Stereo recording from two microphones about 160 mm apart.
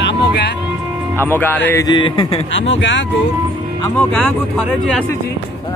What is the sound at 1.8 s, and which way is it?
Speech, 30° left (ahead or behind).